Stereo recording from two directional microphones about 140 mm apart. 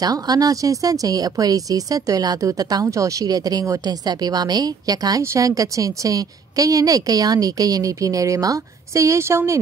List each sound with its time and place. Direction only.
0.0 s speech: 25° right (ahead or behind)